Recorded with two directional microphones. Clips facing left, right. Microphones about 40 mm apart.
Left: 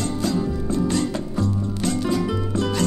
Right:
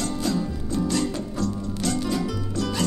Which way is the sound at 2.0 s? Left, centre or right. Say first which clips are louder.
Left 4 dB; left.